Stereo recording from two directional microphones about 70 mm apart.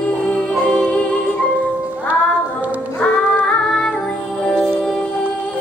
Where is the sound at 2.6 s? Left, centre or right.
Right.